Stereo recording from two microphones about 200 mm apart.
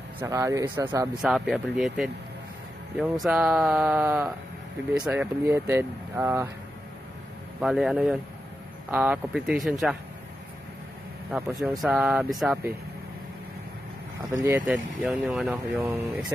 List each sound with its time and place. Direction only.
0.2 s speech: 15° right (ahead or behind)
1.2 s speech: centre (ahead or behind)
7.6 s speech: centre (ahead or behind)
11.8 s speech: 5° right (ahead or behind)
14.7 s speech: 5° right (ahead or behind)